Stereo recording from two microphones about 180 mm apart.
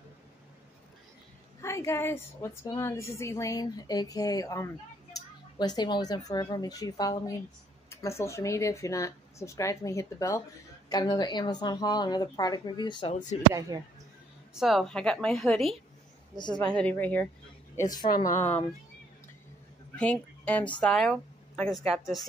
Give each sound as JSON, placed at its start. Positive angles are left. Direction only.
{"t": 1.6, "sound": "a woman's voice", "side_deg": 15}
{"t": 13.1, "sound": "speech", "side_deg": 40}
{"t": 13.5, "sound": "speech", "side_deg": -20}
{"t": 14.5, "sound": "a woman's voice", "side_deg": 0}
{"t": 16.3, "sound": "a woman's voice", "side_deg": 25}
{"t": 16.6, "sound": "a woman's voice", "side_deg": 5}
{"t": 20.0, "sound": "a woman's voice", "side_deg": 10}